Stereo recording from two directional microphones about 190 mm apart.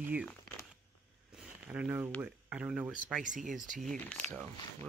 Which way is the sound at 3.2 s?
40° right (ahead or behind).